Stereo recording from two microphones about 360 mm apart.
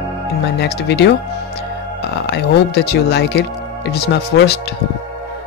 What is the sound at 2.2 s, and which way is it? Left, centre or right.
Music, left.